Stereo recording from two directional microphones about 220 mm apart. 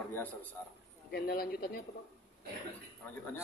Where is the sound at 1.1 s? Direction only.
45° left (ahead or behind).